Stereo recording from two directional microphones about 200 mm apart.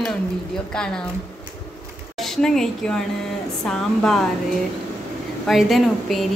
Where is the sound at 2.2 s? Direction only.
5° left (ahead or behind).